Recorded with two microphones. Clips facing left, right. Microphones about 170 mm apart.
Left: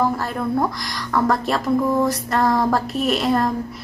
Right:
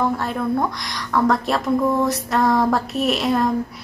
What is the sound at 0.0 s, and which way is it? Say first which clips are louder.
A woman's voice: even; centre (ahead or behind).